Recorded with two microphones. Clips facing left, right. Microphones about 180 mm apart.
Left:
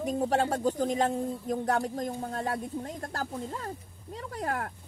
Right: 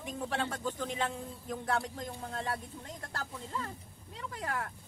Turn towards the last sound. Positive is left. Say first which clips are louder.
# left 5 dB
turn(degrees=40)  # may be behind; listen again after turning